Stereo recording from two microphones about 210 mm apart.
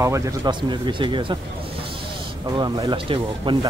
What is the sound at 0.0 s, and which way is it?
Speech, 15° right (ahead or behind).